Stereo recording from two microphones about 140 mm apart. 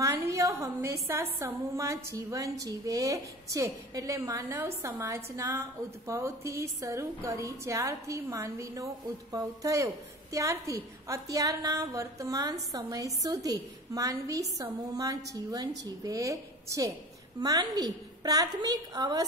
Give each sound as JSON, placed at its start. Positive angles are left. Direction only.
{"t": 0.0, "sound": "a woman's voice", "side_deg": -20}